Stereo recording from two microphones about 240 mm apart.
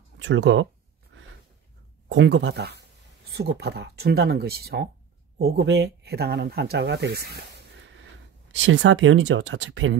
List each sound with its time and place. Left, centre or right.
0.2 s speech: right
1.1 s a sound: right
2.0 s speech: right